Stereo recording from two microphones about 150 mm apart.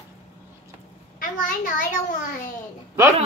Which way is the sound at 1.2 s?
65° left (ahead or behind).